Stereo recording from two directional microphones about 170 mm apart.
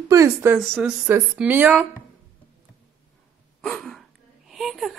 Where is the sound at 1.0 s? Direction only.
10° right (ahead or behind).